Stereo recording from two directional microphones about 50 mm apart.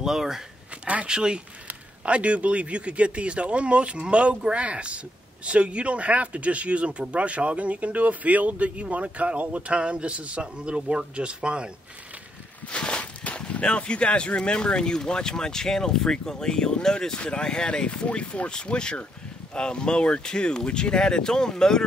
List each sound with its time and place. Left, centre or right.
0.0 s a man's voice: centre
12.6 s a sound: centre
13.4 s speech: left